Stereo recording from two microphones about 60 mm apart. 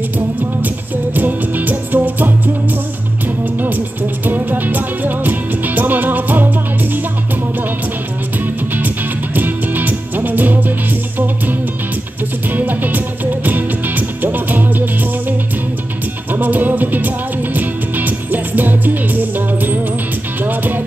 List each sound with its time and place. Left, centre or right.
1.1 s music: right
4.3 s music: right
8.7 s music: right
12.5 s music: right
16.3 s music: right